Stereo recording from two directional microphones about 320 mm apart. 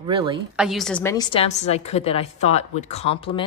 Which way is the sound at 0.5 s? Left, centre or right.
Centre.